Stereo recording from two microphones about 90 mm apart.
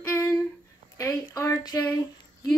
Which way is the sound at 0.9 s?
35° left (ahead or behind).